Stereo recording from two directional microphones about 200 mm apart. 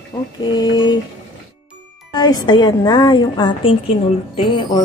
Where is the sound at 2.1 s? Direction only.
20° left (ahead or behind).